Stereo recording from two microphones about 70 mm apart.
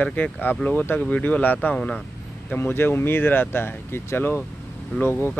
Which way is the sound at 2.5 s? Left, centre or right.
Left.